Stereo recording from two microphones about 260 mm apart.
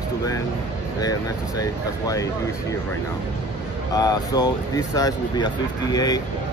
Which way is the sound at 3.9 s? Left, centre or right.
Centre.